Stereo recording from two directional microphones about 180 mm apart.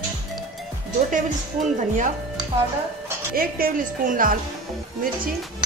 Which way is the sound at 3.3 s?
50° right (ahead or behind).